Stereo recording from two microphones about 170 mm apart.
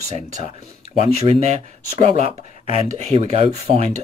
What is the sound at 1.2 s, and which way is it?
Speech, 40° right (ahead or behind).